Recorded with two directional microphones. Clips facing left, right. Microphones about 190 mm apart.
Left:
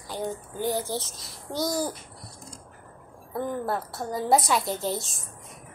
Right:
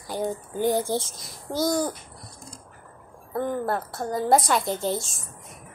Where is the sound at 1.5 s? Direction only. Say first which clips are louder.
Right 4 dB; centre (ahead or behind).